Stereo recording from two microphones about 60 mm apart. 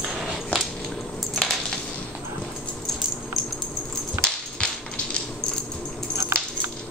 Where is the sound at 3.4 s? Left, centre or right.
Centre.